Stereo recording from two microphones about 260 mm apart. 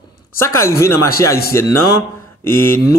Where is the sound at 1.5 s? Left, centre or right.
Centre.